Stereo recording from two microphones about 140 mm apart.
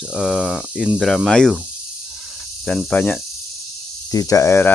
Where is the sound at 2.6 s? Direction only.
10° left (ahead or behind).